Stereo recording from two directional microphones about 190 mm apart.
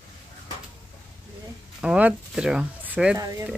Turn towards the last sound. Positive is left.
turn(degrees=-10)  # may be behind; listen again after turning